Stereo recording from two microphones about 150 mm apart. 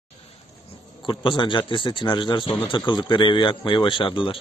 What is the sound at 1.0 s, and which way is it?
Speech, 30° left (ahead or behind).